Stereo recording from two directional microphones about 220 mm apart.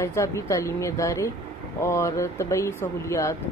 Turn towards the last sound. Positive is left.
turn(degrees=15)  # may be behind; listen again after turning